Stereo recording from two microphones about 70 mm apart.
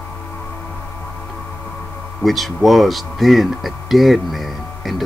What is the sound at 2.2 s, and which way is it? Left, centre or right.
Speech, centre.